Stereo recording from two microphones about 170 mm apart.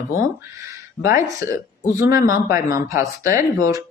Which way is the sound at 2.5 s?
15° right (ahead or behind).